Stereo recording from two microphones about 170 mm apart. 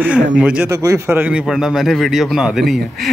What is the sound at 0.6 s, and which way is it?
A man's voice, 20° right (ahead or behind).